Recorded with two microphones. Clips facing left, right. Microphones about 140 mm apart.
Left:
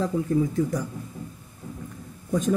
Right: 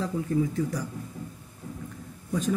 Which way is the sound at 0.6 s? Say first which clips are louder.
Left 4 dB; 45° left (ahead or behind).